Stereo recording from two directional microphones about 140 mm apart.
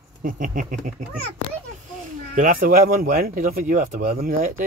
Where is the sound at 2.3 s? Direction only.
75° right (ahead or behind).